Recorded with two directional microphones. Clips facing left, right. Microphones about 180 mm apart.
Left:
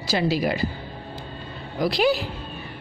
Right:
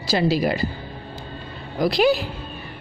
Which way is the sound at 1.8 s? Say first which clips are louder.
Right 3 dB; 45° right (ahead or behind).